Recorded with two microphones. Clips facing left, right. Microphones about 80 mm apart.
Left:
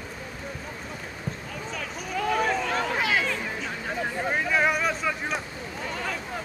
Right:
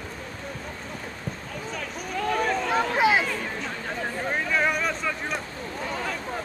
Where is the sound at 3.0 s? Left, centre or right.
Centre.